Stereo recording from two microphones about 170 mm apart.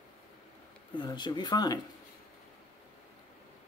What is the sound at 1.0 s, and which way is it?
Speech, 25° left (ahead or behind).